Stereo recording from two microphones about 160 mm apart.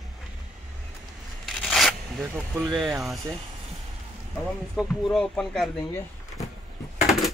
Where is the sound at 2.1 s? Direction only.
15° right (ahead or behind).